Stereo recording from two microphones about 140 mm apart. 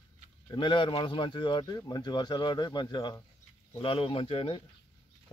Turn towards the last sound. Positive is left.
turn(degrees=40)  # may be behind; listen again after turning